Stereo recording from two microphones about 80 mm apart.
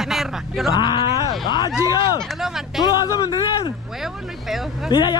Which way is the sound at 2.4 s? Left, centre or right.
Centre.